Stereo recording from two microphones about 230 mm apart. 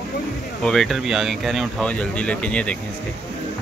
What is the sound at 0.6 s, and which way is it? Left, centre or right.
Speech, centre.